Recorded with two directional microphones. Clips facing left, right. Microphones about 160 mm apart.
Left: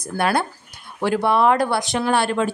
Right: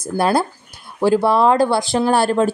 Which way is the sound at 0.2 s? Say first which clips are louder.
Right 3 dB; 35° right (ahead or behind).